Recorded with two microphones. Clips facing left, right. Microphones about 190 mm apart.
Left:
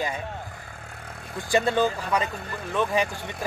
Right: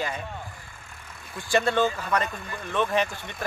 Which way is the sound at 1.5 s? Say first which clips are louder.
Left 1 dB; 15° left (ahead or behind).